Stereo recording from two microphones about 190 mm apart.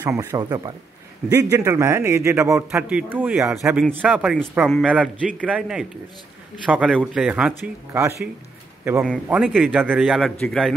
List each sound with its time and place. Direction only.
0.0 s a man's voice: 10° right (ahead or behind)
9.3 s a man's voice: 5° right (ahead or behind)